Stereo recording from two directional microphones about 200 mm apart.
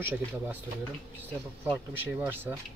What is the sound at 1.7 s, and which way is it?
Speech, 5° right (ahead or behind).